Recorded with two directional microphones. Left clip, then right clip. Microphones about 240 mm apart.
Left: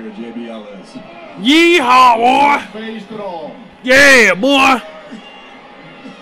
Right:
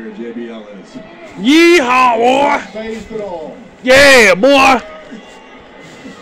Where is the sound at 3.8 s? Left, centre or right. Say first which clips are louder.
Right 1 dB; centre.